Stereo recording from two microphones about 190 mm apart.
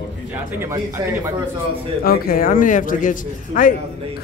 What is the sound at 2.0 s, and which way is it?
A man's voice, 50° left (ahead or behind).